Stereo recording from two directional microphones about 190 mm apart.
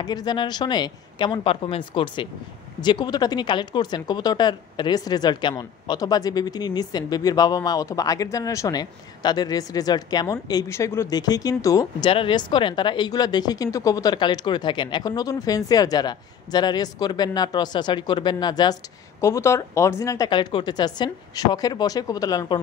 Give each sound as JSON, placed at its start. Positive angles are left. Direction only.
{"t": 0.0, "sound": "speech", "side_deg": 20}